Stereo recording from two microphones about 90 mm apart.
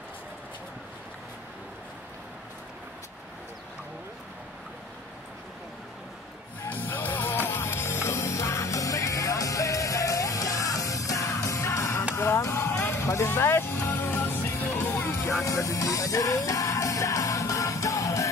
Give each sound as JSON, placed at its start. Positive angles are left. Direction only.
{"t": 6.6, "sound": "music", "side_deg": 20}